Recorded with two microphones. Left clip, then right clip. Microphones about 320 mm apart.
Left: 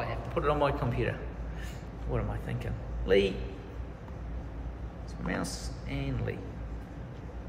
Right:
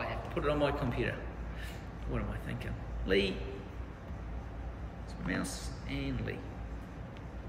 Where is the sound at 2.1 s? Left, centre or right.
Centre.